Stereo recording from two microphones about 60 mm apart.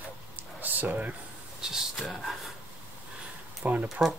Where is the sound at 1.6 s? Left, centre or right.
Centre.